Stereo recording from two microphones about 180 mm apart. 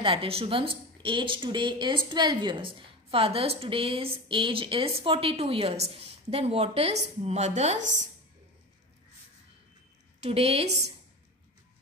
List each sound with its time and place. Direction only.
0.0 s a woman's voice: 30° right (ahead or behind)
10.2 s a woman's voice: 35° right (ahead or behind)